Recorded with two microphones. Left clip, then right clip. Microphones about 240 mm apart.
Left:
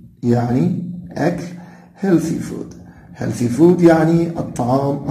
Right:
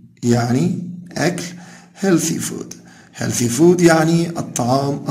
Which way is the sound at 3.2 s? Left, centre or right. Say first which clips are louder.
Left 1 dB; right.